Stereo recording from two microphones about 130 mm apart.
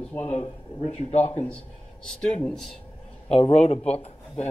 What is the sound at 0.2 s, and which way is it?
Speech, 50° left (ahead or behind).